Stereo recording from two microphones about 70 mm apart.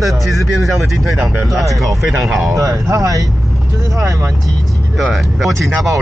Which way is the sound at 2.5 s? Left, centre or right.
Right.